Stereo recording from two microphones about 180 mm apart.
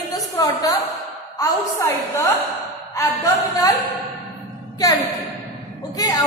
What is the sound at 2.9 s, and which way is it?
Speech, 20° left (ahead or behind).